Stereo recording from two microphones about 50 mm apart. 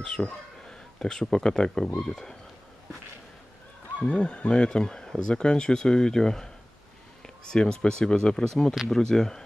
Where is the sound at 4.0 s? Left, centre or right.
Centre.